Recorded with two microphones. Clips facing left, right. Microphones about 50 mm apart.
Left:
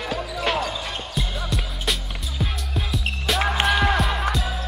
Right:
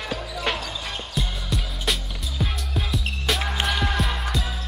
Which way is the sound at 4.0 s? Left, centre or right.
Centre.